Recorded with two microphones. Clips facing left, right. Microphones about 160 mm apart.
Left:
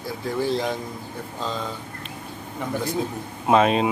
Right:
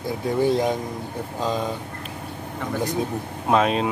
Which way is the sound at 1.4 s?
15° right (ahead or behind).